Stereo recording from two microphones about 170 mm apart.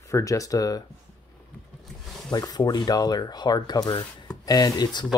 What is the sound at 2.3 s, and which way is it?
Speech, 25° left (ahead or behind).